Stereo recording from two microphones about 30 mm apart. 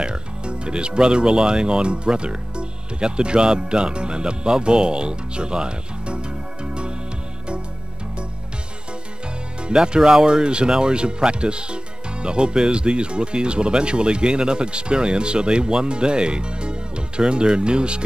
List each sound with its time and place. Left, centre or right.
0.0 s speech: right
9.7 s speech: right